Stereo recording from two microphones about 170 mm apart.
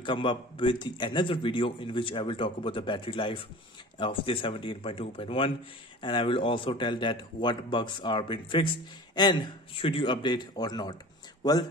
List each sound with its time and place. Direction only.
0.0 s speech: 30° left (ahead or behind)